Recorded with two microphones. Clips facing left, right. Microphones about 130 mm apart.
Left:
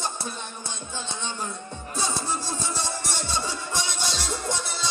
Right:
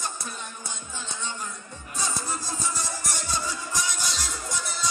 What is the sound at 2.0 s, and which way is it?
Music, 30° left (ahead or behind).